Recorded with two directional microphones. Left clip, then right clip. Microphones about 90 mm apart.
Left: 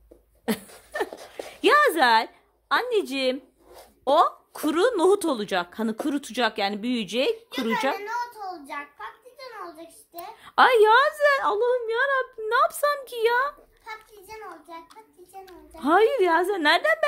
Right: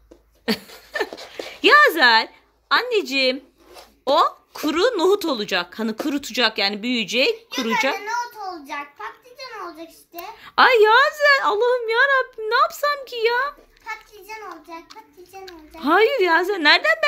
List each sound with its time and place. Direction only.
0.5 s a sound: 15° left (ahead or behind)
4.1 s a child's voice: 20° left (ahead or behind)
11.5 s a child's voice: centre (ahead or behind)
12.6 s a child's voice: 35° left (ahead or behind)